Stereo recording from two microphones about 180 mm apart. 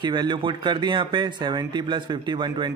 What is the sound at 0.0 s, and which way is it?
A man's voice, 25° right (ahead or behind).